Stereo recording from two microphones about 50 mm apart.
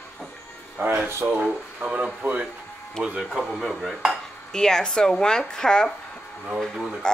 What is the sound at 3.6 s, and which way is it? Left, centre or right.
Stir, centre.